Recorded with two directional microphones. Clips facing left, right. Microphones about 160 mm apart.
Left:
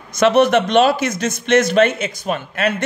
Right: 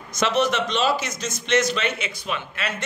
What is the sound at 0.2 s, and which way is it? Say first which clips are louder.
A man's voice: left 9 dB; 60° left (ahead or behind).